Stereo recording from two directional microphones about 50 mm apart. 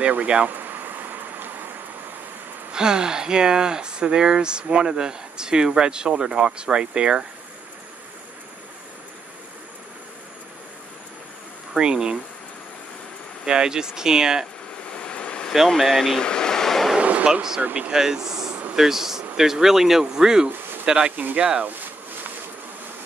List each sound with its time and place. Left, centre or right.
0.1 s speech: right
0.5 s a sound: right
2.7 s speech: centre
11.7 s speech: centre
13.5 s speech: centre
14.9 s vehicle: left
15.8 s vehicle: centre
17.0 s a sound: right
17.3 s speech: centre
20.4 s a sound: right
20.8 s speech: centre